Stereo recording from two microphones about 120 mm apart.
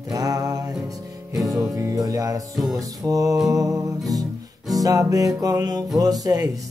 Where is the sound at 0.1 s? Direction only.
30° right (ahead or behind).